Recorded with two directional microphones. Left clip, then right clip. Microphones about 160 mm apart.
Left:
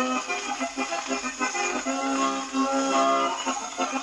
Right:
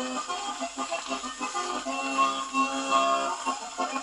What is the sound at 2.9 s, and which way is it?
Music, 5° right (ahead or behind).